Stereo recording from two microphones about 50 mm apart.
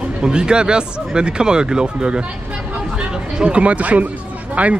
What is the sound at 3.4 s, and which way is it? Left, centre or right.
Speech, right.